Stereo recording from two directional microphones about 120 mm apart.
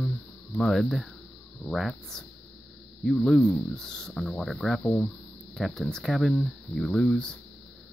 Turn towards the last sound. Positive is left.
turn(degrees=10)  # may be behind; listen again after turning